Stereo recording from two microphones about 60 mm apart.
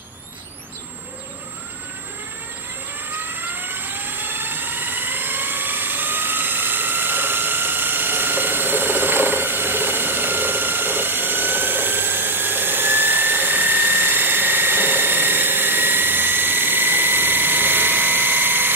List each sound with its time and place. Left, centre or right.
3.6 s vehicle: right